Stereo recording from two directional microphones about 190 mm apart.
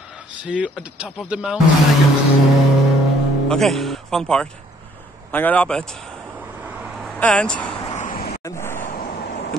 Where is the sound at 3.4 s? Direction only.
Centre (ahead or behind).